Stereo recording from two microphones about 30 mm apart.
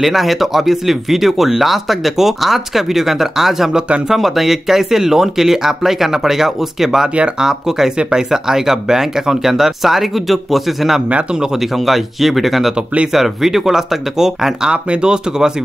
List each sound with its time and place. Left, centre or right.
0.0 s speech: centre
14.7 s speech: right